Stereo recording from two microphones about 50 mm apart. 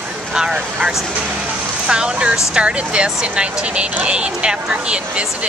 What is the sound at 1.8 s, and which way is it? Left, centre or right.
Speech, centre.